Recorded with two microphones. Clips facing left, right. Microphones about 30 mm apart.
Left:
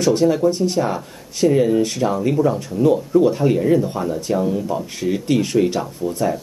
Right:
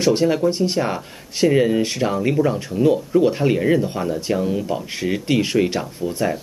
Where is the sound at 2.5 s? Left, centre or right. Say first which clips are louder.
Left 1 dB; centre.